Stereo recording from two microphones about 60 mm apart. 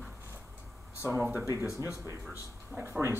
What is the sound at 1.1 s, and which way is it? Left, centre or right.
Speech, right.